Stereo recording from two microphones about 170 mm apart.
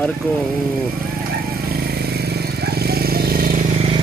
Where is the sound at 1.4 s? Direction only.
65° right (ahead or behind).